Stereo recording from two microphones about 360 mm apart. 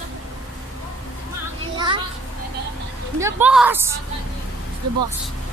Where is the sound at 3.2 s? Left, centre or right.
Centre.